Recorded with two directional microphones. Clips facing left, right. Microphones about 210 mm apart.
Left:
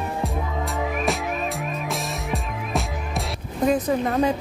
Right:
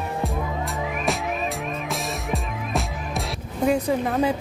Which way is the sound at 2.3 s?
Centre (ahead or behind).